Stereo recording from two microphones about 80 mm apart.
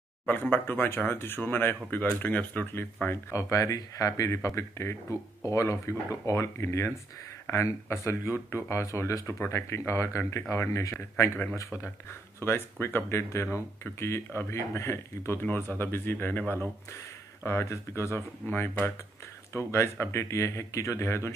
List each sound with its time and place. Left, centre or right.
0.3 s speech: left